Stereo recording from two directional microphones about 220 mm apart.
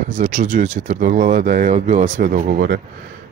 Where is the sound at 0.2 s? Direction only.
35° right (ahead or behind).